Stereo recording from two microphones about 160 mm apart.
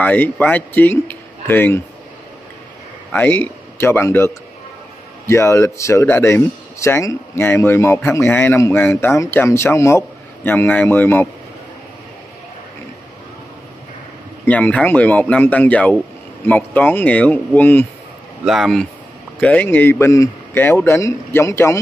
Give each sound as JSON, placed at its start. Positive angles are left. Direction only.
{"t": 0.0, "sound": "speech", "side_deg": 10}
{"t": 3.1, "sound": "speech", "side_deg": 15}
{"t": 14.4, "sound": "speech", "side_deg": 10}
{"t": 18.4, "sound": "speech", "side_deg": 0}